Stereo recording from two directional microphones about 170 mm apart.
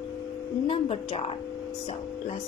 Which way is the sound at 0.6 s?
30° left (ahead or behind).